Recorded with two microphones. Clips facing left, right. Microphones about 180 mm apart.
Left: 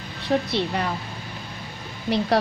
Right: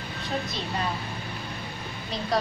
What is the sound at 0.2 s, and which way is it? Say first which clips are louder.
Speech: left 9 dB; 70° left (ahead or behind).